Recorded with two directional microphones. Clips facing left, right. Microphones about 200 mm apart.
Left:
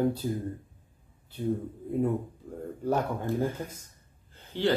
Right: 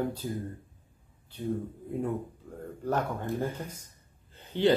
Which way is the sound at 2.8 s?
10° left (ahead or behind).